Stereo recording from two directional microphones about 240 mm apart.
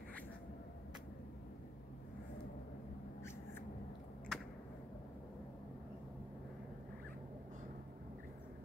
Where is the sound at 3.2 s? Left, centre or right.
Centre.